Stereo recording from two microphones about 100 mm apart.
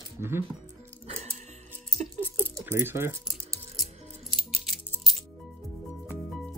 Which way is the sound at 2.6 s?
25° right (ahead or behind).